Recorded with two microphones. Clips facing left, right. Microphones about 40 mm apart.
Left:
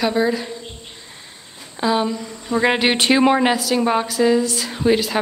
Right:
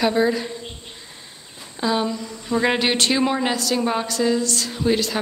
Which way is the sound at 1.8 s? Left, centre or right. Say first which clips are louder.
Left 3 dB; centre.